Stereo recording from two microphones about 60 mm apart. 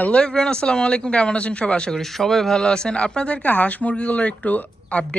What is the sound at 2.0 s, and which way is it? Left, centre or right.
Speech, centre.